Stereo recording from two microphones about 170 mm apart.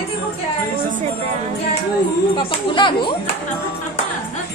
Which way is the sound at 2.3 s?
30° left (ahead or behind).